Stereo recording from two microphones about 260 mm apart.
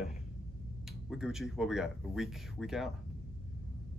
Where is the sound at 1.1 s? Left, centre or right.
Centre.